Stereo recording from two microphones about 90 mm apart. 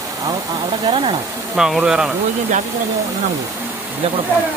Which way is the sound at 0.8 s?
85° right.